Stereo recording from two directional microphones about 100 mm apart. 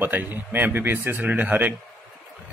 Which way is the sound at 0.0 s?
20° right (ahead or behind).